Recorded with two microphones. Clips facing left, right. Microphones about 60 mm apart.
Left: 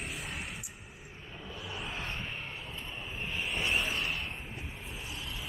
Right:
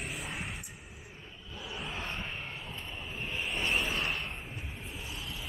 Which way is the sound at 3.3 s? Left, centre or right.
Centre.